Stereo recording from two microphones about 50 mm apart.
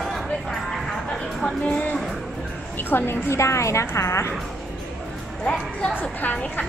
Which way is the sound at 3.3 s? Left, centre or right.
Left.